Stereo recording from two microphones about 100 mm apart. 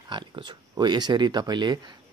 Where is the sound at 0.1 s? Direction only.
50° right (ahead or behind).